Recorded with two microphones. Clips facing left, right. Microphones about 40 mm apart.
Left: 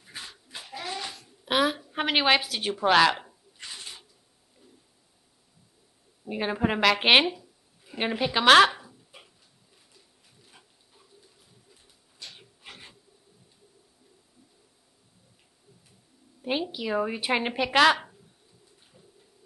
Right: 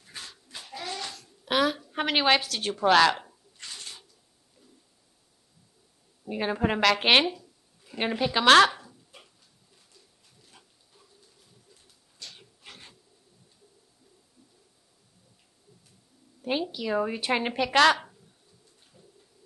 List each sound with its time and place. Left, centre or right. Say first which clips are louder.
0.0 s babbling: left 1 dB; centre
6.2 s speech: even; centre
9.9 s bird: left 1 dB; centre
12.2 s rub: left 1 dB; centre
16.4 s a woman's voice: even; centre